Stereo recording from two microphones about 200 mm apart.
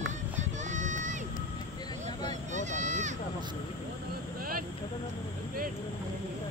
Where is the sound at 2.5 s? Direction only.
35° right (ahead or behind).